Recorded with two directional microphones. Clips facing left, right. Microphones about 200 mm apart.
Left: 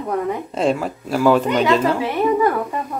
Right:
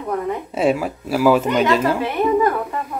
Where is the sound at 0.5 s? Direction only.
5° right (ahead or behind).